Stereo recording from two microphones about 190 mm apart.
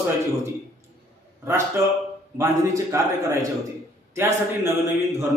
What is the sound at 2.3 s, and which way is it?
A man's voice, 15° right (ahead or behind).